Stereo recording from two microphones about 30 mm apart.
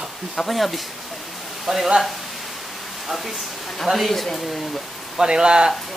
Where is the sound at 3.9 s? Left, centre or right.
Right.